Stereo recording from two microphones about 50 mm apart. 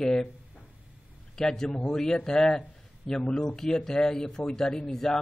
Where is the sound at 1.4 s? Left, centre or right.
Centre.